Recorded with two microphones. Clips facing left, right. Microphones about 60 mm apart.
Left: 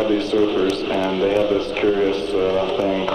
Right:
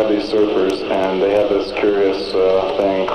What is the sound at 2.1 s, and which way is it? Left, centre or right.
Speech, right.